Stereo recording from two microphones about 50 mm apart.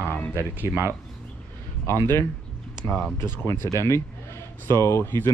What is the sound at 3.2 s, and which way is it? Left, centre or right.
Speech, left.